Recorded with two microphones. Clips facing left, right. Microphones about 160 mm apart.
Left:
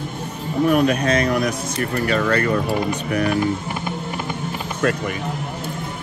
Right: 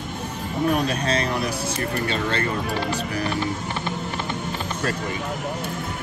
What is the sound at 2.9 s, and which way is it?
Speech, 30° right (ahead or behind).